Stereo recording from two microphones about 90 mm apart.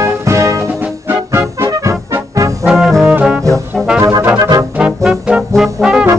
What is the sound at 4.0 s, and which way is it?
Brass instrument, 35° right (ahead or behind).